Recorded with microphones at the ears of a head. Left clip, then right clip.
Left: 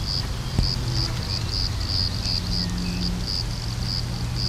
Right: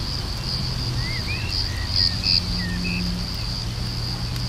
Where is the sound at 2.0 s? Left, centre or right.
Right.